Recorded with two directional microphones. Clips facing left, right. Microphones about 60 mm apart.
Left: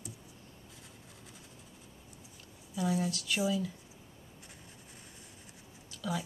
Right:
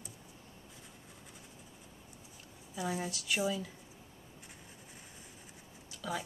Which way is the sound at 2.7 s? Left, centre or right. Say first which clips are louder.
Left 5 dB; centre.